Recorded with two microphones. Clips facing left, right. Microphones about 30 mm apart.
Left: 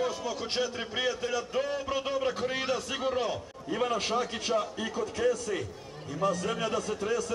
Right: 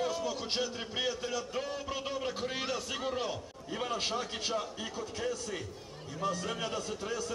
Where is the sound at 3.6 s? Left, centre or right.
Centre.